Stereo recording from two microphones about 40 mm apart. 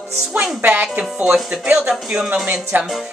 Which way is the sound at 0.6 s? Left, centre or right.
Right.